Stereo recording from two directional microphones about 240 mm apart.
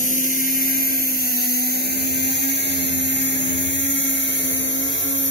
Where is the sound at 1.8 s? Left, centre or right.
Left.